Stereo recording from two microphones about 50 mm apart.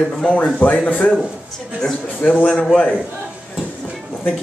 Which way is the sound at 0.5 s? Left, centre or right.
Left.